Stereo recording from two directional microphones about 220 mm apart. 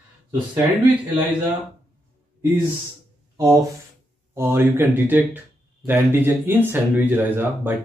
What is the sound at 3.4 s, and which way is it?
Speech, 20° right (ahead or behind).